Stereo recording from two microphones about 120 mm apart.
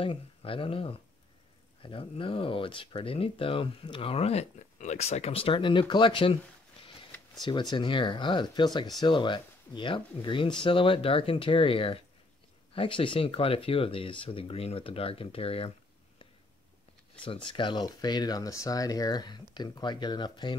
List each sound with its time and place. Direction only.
0.0 s speech: 50° left (ahead or behind)
7.4 s speech: 40° left (ahead or behind)
17.2 s speech: 40° left (ahead or behind)